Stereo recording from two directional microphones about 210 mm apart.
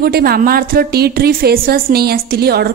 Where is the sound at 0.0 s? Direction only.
45° right (ahead or behind).